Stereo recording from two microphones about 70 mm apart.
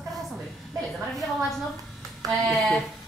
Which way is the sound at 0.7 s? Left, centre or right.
Centre.